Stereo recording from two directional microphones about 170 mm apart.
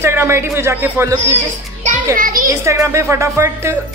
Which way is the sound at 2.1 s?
55° right (ahead or behind).